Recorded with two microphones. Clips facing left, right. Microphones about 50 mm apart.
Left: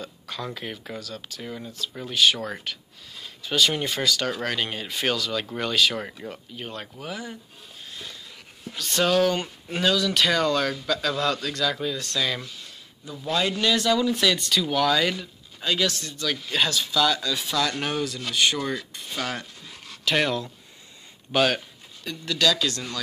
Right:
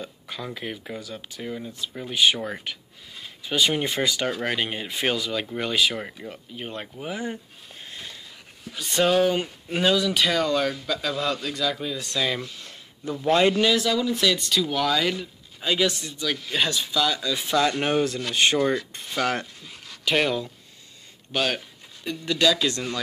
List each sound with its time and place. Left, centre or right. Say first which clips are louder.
0.0 s a sound: left 1 dB; centre
0.6 s speech: right 1 dB; centre
0.9 s speech: right 1 dB; centre
7.8 s a sound: even; right
8.7 s speech: right 1 dB; centre
12.6 s a sound: right 8 dB; right
13.6 s speech: even; centre
15.6 s speech: right 2 dB; centre
17.4 s speech: right 3 dB; right
20.1 s speech: right 1 dB; centre
22.0 s speech: right 2 dB; right